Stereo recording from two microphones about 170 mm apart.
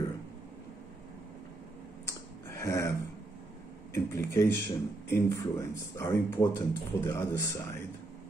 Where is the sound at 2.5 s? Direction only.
15° left (ahead or behind).